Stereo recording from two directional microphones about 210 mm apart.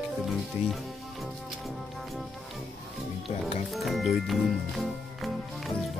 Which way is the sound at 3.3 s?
25° left (ahead or behind).